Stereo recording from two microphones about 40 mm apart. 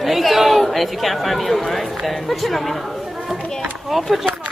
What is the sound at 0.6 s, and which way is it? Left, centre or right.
Speech, centre.